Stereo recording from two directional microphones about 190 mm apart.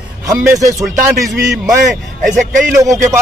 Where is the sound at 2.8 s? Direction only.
15° right (ahead or behind).